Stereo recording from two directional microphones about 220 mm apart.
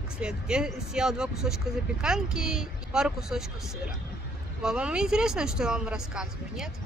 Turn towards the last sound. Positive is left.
turn(degrees=-5)  # may be behind; listen again after turning